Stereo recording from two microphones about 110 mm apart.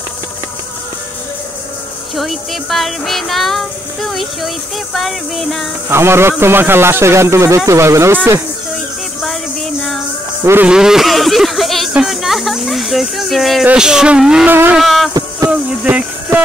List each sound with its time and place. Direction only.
2.1 s speech: centre (ahead or behind)
5.9 s a man's voice: 25° right (ahead or behind)
10.4 s a man's voice: 20° right (ahead or behind)
10.7 s speech: 5° right (ahead or behind)
14.5 s a man's voice: 20° right (ahead or behind)
14.8 s a sound: centre (ahead or behind)
15.5 s a sound: 15° right (ahead or behind)